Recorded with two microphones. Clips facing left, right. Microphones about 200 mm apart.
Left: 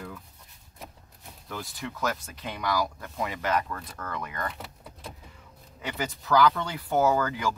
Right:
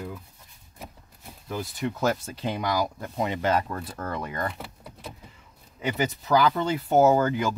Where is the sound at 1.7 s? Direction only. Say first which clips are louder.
Right 6 dB; 25° right (ahead or behind).